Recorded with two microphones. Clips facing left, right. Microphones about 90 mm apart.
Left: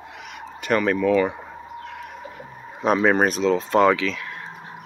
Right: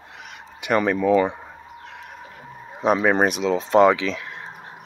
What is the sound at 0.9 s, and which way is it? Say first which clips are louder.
Speech: right 1 dB; 20° right (ahead or behind).